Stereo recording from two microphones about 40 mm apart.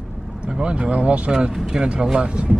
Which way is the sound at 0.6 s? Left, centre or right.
Right.